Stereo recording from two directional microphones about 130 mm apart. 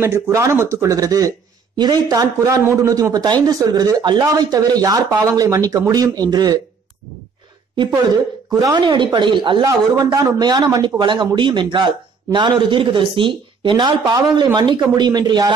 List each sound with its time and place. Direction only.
0.0 s speech: 20° right (ahead or behind)
8.5 s a man's voice: 30° right (ahead or behind)